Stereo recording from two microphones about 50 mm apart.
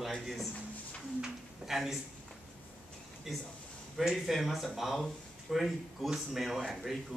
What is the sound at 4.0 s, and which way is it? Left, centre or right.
Speech, centre.